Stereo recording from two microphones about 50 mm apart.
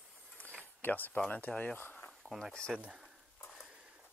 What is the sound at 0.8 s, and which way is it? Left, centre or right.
Speech, left.